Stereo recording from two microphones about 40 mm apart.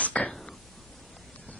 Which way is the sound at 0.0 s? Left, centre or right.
Left.